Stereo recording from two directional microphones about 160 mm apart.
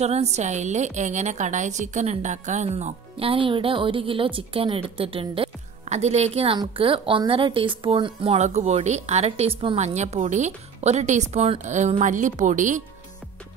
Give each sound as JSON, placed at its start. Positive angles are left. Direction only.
{"t": 0.0, "sound": "a woman's voice", "side_deg": -45}